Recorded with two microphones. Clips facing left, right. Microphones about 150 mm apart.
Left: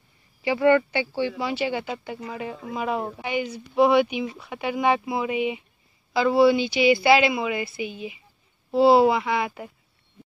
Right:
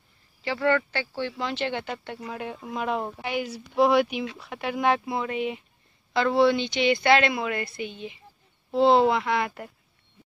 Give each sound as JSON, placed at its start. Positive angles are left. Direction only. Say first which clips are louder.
{"t": 0.4, "sound": "a woman's voice", "louder": "left 5 dB", "side_deg": 10}